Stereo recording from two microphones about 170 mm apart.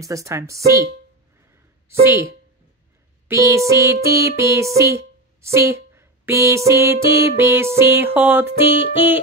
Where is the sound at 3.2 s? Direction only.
20° right (ahead or behind).